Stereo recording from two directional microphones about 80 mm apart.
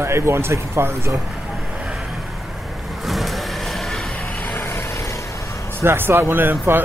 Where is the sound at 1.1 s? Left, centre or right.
Centre.